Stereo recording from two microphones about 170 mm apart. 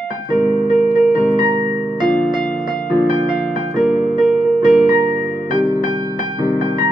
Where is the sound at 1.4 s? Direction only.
25° right (ahead or behind).